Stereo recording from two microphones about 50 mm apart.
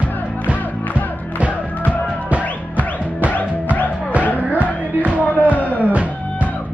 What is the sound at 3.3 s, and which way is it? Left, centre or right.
Music, left.